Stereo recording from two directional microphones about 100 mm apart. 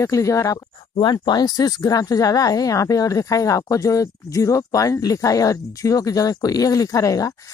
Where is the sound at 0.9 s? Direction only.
50° left (ahead or behind).